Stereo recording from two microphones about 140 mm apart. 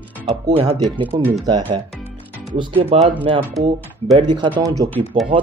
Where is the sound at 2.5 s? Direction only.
40° right (ahead or behind).